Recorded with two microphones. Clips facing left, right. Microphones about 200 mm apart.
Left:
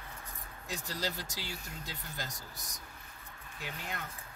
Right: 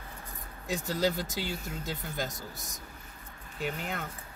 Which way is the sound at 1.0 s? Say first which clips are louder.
Right 11 dB; 55° right (ahead or behind).